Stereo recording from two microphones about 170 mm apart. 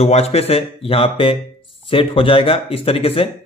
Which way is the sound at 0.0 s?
35° left (ahead or behind).